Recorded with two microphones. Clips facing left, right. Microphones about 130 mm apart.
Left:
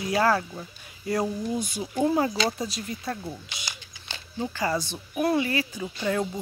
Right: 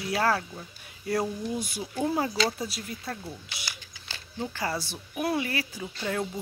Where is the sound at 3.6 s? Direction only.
20° left (ahead or behind).